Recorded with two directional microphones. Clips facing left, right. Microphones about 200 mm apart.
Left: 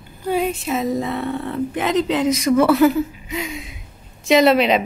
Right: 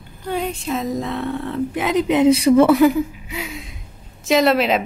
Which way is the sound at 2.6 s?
15° right (ahead or behind).